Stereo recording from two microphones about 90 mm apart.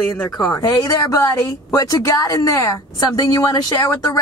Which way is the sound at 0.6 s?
45° left (ahead or behind).